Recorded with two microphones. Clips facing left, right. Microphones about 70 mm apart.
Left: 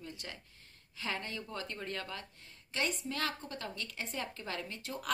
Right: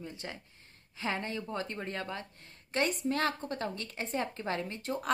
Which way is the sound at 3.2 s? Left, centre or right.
Right.